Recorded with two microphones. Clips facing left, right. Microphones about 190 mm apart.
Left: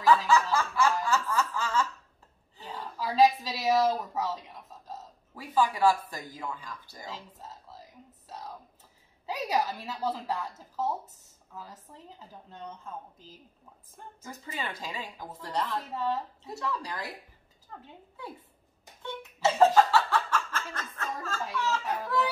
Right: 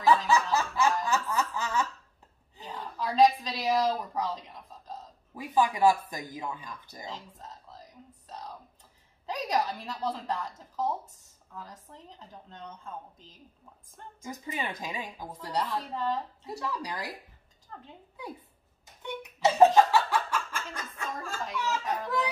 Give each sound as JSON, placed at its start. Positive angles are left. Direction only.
{"t": 0.3, "sound": "snicker", "side_deg": -20}
{"t": 1.0, "sound": "music", "side_deg": -20}
{"t": 2.7, "sound": "a woman's voice", "side_deg": 5}
{"t": 5.3, "sound": "speech", "side_deg": -20}
{"t": 7.1, "sound": "music", "side_deg": 5}
{"t": 9.2, "sound": "a woman's voice", "side_deg": 5}
{"t": 14.2, "sound": "speech", "side_deg": -15}
{"t": 15.9, "sound": "a woman's voice", "side_deg": 5}
{"t": 16.4, "sound": "speech", "side_deg": -15}
{"t": 17.7, "sound": "a woman's voice", "side_deg": 5}
{"t": 19.0, "sound": "speech", "side_deg": -15}
{"t": 21.8, "sound": "a child's voice", "side_deg": 5}